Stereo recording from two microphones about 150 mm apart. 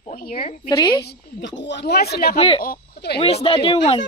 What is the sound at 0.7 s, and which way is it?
Speech, 25° left (ahead or behind).